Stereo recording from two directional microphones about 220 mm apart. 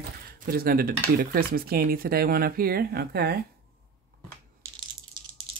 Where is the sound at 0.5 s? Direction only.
45° right (ahead or behind).